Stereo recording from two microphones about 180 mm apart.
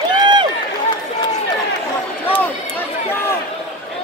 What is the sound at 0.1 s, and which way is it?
Run, 25° right (ahead or behind).